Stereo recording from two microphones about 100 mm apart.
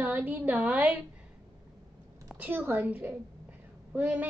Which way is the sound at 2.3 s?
20° right (ahead or behind).